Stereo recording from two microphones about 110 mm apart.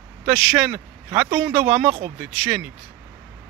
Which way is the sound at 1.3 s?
25° right (ahead or behind).